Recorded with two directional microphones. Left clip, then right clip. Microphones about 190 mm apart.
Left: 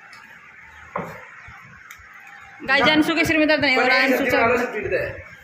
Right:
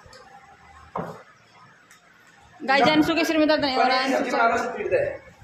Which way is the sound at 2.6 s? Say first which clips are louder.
Left 2 dB; 5° right (ahead or behind).